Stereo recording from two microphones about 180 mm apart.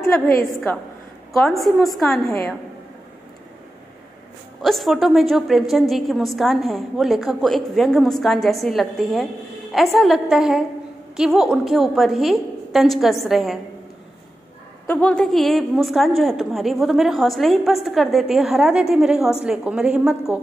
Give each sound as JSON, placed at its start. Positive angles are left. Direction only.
{"t": 0.0, "sound": "a woman's voice", "side_deg": 15}
{"t": 1.3, "sound": "a woman's voice", "side_deg": 0}
{"t": 4.6, "sound": "a woman's voice", "side_deg": 0}
{"t": 14.9, "sound": "a woman's voice", "side_deg": 5}